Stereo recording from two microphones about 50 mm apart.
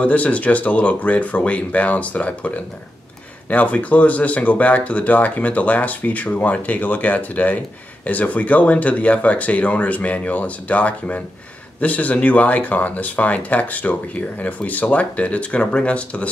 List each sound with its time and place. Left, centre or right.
0.0 s speech: left